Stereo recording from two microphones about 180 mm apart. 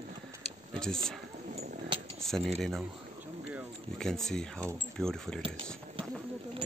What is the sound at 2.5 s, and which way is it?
Speech, centre (ahead or behind).